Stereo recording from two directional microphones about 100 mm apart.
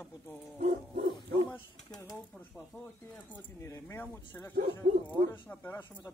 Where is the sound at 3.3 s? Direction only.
25° left (ahead or behind).